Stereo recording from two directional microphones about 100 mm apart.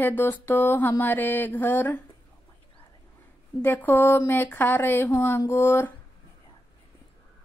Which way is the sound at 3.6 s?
20° left (ahead or behind).